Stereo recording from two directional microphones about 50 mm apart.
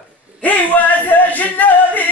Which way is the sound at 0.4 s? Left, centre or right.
Left.